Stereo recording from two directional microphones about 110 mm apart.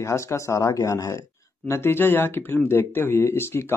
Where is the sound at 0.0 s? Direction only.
25° left (ahead or behind).